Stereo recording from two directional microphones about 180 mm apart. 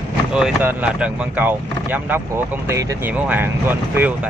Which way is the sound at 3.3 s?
10° right (ahead or behind).